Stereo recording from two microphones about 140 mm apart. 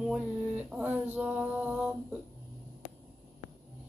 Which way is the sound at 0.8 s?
10° right (ahead or behind).